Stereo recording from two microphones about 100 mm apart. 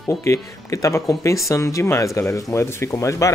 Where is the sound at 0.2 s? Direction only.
30° left (ahead or behind).